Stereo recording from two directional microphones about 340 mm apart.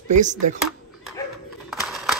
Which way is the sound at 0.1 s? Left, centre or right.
Right.